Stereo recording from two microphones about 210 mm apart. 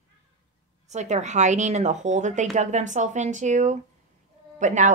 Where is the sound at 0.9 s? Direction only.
35° right (ahead or behind).